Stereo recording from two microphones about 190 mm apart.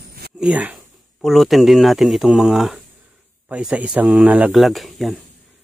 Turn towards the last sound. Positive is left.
turn(degrees=0)  # may be behind; listen again after turning